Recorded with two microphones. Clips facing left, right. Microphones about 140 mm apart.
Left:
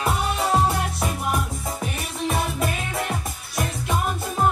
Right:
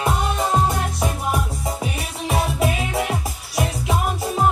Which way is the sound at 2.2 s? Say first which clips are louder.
Right 3 dB; 5° right (ahead or behind).